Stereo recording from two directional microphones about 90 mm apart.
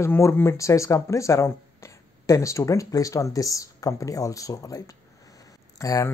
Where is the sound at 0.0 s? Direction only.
30° left (ahead or behind).